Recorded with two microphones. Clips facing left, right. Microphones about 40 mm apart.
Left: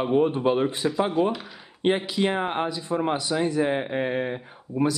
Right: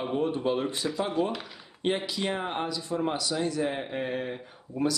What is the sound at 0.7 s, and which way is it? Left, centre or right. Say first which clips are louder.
Speech: left 6 dB; centre.